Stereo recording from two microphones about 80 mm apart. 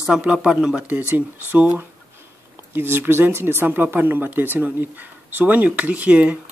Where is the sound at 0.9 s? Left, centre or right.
Right.